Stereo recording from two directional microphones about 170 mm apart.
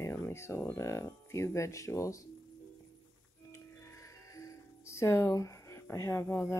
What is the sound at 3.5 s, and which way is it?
Music, 20° left (ahead or behind).